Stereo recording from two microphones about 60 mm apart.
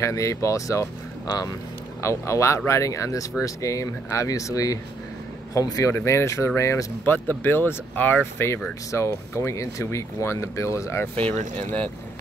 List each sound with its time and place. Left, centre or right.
0.0 s speech: left
2.0 s speech: left
5.5 s speech: left
5.9 s speech: left
7.1 s speech: left
8.9 s speech: left
11.1 s speech: left